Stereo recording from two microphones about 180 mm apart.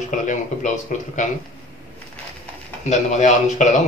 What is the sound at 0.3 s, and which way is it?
Speech, 45° left (ahead or behind).